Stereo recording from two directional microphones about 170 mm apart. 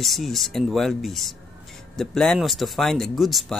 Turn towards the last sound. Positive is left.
turn(degrees=0)  # may be behind; listen again after turning